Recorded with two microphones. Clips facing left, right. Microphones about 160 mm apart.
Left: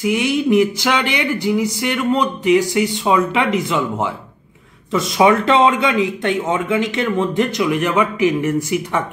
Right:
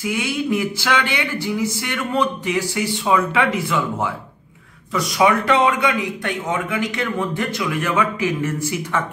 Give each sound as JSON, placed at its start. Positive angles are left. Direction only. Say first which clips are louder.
{"t": 0.0, "sound": "a man's voice", "louder": "left 5 dB", "side_deg": 20}